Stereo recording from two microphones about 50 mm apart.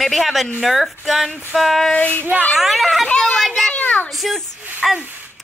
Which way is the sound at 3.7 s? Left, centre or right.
Left.